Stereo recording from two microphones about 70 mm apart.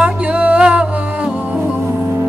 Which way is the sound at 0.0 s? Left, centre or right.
Centre.